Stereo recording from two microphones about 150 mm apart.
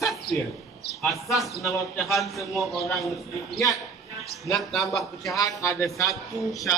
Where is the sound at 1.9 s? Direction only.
Centre (ahead or behind).